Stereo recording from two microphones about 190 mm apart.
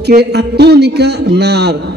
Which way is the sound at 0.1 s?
60° right (ahead or behind).